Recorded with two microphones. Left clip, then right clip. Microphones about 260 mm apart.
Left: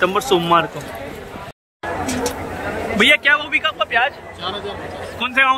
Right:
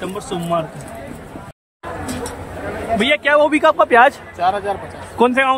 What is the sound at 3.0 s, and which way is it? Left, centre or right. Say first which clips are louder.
Speech: even; centre.